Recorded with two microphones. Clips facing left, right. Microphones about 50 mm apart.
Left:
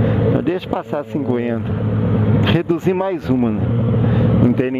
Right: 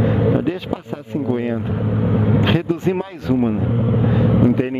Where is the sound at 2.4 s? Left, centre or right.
Left.